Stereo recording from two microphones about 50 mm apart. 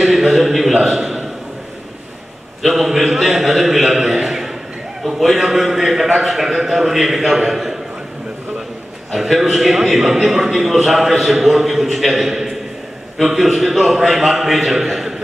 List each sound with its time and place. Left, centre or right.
0.0 s a sound: centre
2.6 s a man's voice: centre
9.1 s a man's voice: centre